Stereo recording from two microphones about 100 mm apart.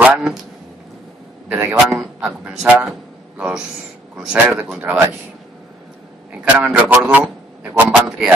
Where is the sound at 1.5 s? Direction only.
20° right (ahead or behind).